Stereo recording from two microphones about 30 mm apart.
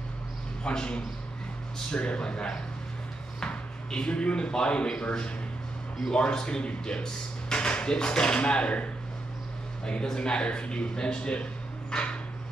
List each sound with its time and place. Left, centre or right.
0.7 s speech: left
6.1 s speech: left
10.1 s speech: left
11.9 s a sound: left